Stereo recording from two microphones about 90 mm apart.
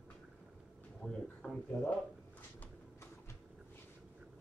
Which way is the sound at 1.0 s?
10° left (ahead or behind).